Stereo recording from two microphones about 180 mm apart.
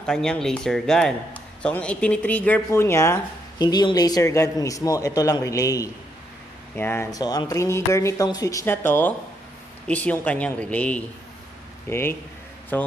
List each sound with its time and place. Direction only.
0.0 s a man's voice: 5° left (ahead or behind)